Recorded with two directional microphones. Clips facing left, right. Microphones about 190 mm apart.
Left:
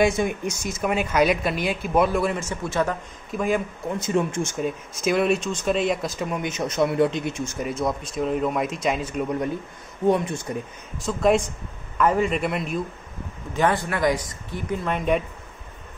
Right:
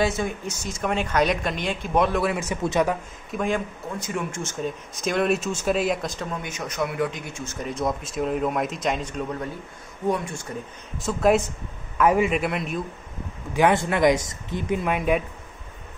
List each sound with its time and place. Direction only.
0.0 s speech: 15° left (ahead or behind); by 2.4 s centre (ahead or behind)
2.4 s speech: 15° right (ahead or behind)
3.3 s speech: 5° left (ahead or behind)
4.0 s speech: 20° left (ahead or behind)
7.4 s speech: 5° left (ahead or behind)
10.0 s speech: 20° left (ahead or behind)
11.1 s speech: 5° right (ahead or behind)
13.5 s speech: 10° right (ahead or behind)
13.7 s a woman's voice: 20° right (ahead or behind)
14.9 s speech: 5° right (ahead or behind)